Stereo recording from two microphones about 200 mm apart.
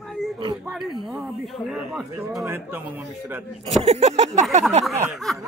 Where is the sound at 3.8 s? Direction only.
30° right (ahead or behind).